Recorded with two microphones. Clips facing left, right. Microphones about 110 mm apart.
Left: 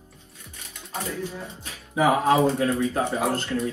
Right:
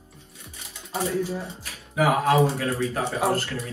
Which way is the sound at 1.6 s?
25° left (ahead or behind).